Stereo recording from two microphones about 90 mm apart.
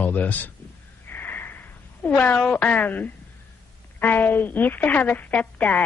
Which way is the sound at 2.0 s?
15° left (ahead or behind).